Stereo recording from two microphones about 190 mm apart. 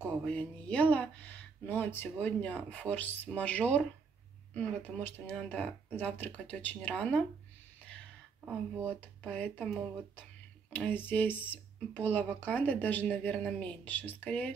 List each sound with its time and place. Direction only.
0.2 s speech: 5° left (ahead or behind)
9.0 s speech: 10° left (ahead or behind)
10.7 s speech: 10° left (ahead or behind)